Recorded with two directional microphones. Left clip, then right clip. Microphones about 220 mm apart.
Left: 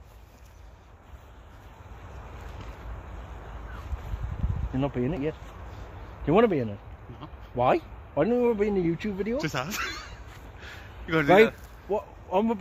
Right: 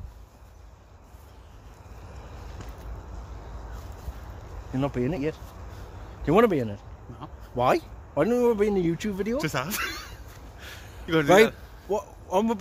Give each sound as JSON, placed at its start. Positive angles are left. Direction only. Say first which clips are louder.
{"t": 4.7, "sound": "speech", "louder": "right 1 dB", "side_deg": 5}
{"t": 9.4, "sound": "speech", "louder": "right 2 dB", "side_deg": -35}
{"t": 10.6, "sound": "a sound", "louder": "right 1 dB", "side_deg": -50}
{"t": 11.9, "sound": "speech", "louder": "right 1 dB", "side_deg": 0}